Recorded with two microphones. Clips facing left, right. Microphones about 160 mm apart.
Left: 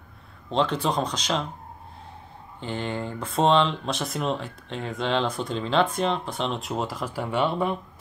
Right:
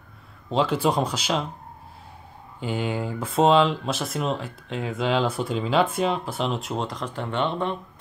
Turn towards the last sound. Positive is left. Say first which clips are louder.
# left 1 dB
turn(degrees=5)  # may be behind; listen again after turning